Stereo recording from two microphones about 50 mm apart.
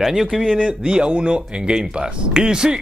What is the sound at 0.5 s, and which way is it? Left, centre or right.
Speech, centre.